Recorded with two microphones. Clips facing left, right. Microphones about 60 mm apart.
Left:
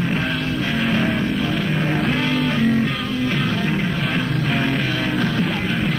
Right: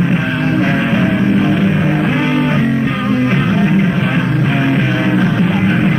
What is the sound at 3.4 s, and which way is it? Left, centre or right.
Music, right.